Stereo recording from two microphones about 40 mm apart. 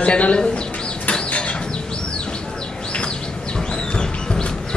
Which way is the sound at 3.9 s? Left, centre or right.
Left.